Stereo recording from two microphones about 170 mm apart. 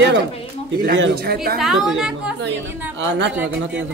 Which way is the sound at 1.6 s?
Centre (ahead or behind).